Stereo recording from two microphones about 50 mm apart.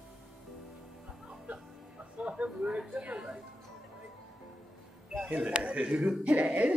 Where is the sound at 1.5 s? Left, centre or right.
Right.